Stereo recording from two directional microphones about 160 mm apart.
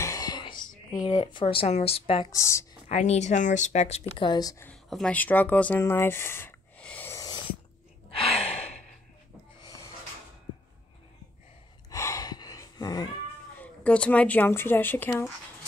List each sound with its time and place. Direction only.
0.0 s a sound: 20° left (ahead or behind)
1.0 s speech: 35° left (ahead or behind)
2.3 s speech: 20° left (ahead or behind)
2.9 s speech: 45° left (ahead or behind)
4.1 s speech: 30° left (ahead or behind)
4.6 s a sound: 5° left (ahead or behind); by 7.3 s 20° left (ahead or behind)
8.2 s gasp: 40° left (ahead or behind)
11.9 s gasp: 20° left (ahead or behind)
13.6 s speech: 10° left (ahead or behind)